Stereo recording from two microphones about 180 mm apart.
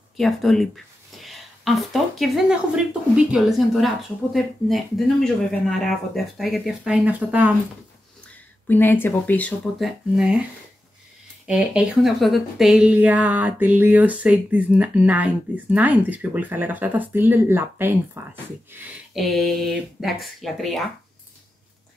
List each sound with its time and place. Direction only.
0.2 s speech: centre (ahead or behind)
8.6 s speech: 10° left (ahead or behind)
10.1 s speech: 5° right (ahead or behind)
11.4 s a woman's voice: 5° right (ahead or behind)
19.1 s speech: centre (ahead or behind)